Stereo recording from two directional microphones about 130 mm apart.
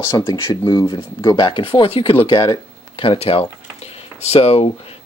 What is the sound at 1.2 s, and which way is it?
Speech, 35° left (ahead or behind).